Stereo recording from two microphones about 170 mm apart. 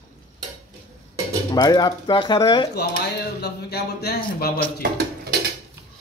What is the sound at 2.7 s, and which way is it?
Speech, 75° left (ahead or behind).